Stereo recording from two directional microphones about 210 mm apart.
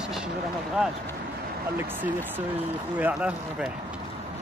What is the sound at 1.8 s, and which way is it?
Speech, 10° right (ahead or behind).